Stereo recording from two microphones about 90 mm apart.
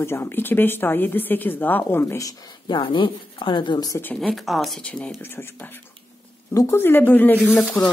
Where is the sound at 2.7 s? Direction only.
60° left (ahead or behind).